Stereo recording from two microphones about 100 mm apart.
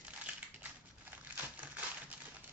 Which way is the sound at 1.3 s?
15° right (ahead or behind).